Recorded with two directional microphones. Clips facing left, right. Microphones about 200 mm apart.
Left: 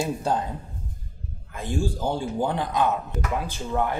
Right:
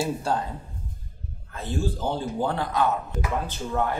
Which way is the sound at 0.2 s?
20° left (ahead or behind).